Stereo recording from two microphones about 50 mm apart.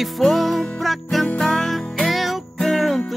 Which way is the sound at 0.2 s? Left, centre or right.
Centre.